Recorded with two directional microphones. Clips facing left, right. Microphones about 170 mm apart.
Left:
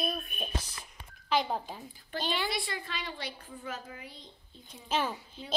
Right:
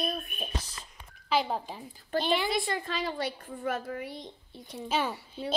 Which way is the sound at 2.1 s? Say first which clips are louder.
Right 6 dB; 45° right (ahead or behind).